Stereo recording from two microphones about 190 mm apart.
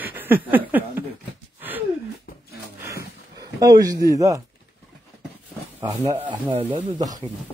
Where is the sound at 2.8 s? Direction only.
20° right (ahead or behind).